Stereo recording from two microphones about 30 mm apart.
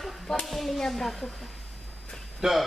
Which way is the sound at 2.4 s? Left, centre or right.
Centre.